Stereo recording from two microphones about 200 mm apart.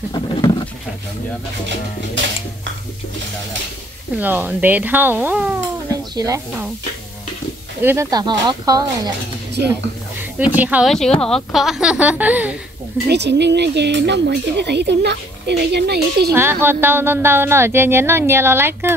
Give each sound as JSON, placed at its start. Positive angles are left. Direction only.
{"t": 0.1, "sound": "speech", "side_deg": 20}
{"t": 4.2, "sound": "a woman's voice", "side_deg": -10}
{"t": 7.8, "sound": "speech", "side_deg": -15}
{"t": 10.4, "sound": "a woman's voice", "side_deg": -10}
{"t": 13.1, "sound": "speech", "side_deg": -60}
{"t": 16.6, "sound": "a woman's voice", "side_deg": -10}